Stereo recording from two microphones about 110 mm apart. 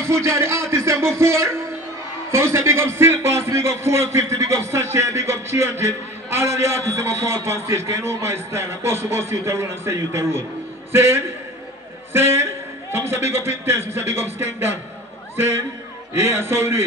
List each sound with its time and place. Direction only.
0.0 s a man's voice: 25° right (ahead or behind)
16.1 s a man's voice: 20° right (ahead or behind)